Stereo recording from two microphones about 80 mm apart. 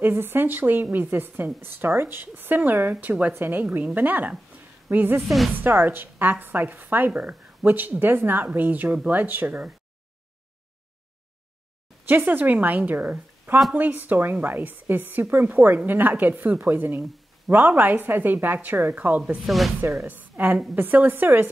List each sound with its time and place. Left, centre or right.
0.0 s a woman's voice: right
12.1 s a woman's voice: right
19.4 s speech: centre
19.8 s a woman's voice: right
20.1 s a woman's voice: right